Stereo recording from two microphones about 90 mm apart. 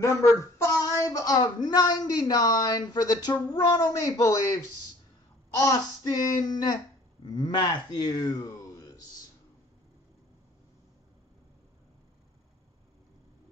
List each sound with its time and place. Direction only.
0.0 s a sound: 35° left (ahead or behind)
0.9 s speech: 40° left (ahead or behind)
5.6 s speech: 40° left (ahead or behind)